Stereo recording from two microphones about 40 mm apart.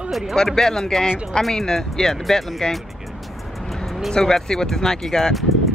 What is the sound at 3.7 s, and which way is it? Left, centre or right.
Vehicle, centre.